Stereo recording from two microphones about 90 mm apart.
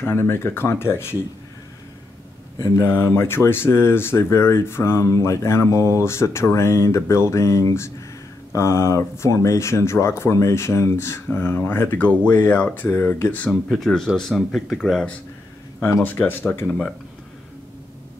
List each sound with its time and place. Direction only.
0.0 s speech: 25° left (ahead or behind)
2.8 s speech: 25° left (ahead or behind)
11.3 s speech: 20° left (ahead or behind)
12.8 s speech: 25° left (ahead or behind)
13.5 s speech: centre (ahead or behind)
16.0 s speech: 20° left (ahead or behind)
16.6 s speech: centre (ahead or behind)